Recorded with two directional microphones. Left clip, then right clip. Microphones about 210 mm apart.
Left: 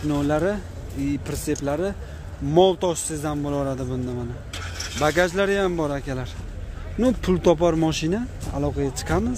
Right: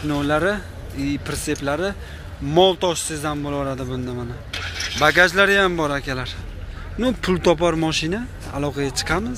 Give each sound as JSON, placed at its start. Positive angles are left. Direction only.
{"t": 0.1, "sound": "speech", "side_deg": 15}
{"t": 4.5, "sound": "mechanisms", "side_deg": 50}
{"t": 5.0, "sound": "speech", "side_deg": 10}
{"t": 8.5, "sound": "speech", "side_deg": 10}